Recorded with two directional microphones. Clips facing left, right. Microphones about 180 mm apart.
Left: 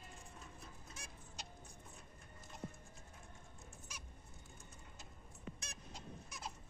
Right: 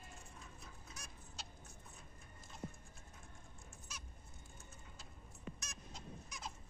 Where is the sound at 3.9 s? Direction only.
10° left (ahead or behind).